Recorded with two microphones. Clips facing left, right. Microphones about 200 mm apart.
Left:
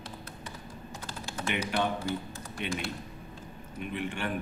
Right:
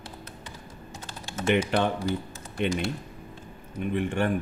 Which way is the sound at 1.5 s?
50° right (ahead or behind).